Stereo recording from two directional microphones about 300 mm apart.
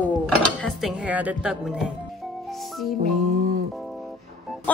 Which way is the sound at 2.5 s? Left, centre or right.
Centre.